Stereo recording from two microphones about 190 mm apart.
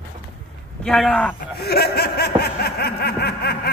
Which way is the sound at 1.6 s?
55° left (ahead or behind).